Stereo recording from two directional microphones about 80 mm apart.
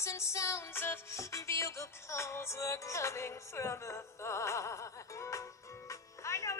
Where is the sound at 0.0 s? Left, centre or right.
Left.